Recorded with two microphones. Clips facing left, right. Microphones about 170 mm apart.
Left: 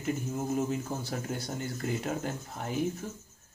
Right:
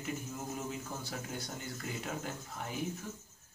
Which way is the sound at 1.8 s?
45° left (ahead or behind).